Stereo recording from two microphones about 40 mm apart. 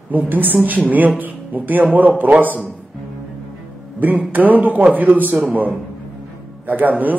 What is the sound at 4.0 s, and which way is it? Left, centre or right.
Speech, right.